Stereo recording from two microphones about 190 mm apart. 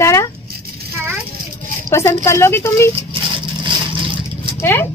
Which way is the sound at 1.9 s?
15° left (ahead or behind).